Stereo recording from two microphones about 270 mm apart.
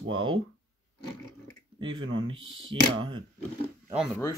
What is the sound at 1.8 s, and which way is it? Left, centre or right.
Speech, centre.